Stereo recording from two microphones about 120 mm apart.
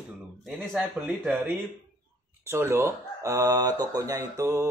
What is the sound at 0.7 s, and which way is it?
Speech, 15° right (ahead or behind).